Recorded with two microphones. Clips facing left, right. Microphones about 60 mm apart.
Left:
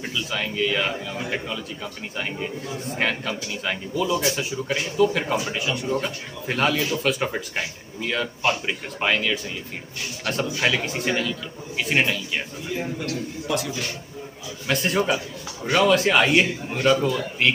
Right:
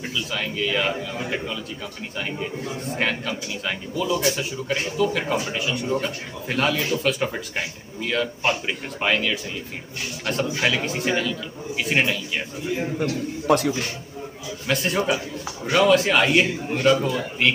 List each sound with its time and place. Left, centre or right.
0.0 s speech: centre
13.5 s a man's voice: right
14.7 s speech: centre